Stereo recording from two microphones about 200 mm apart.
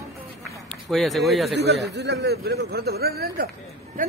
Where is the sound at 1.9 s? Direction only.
60° right (ahead or behind).